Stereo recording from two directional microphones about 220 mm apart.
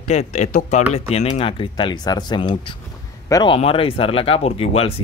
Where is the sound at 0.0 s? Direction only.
30° left (ahead or behind).